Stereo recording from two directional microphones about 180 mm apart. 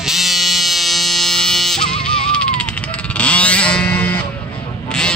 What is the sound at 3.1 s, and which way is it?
Guitar, 5° left (ahead or behind).